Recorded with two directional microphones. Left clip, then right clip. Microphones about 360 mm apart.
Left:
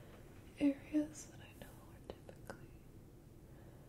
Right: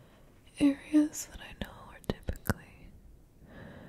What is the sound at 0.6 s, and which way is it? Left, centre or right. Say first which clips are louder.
Whispering: right 10 dB; right.